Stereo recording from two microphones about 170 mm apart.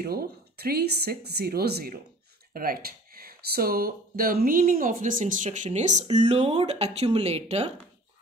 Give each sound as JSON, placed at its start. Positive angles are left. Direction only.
{"t": 0.0, "sound": "speech", "side_deg": -65}